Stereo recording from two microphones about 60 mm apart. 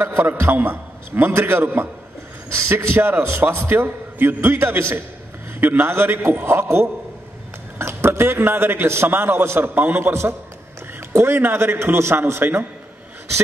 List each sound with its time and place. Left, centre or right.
0.0 s a man's voice: right
0.5 s a man's voice: right